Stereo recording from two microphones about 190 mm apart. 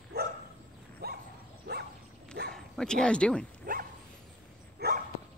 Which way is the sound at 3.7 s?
45° right (ahead or behind).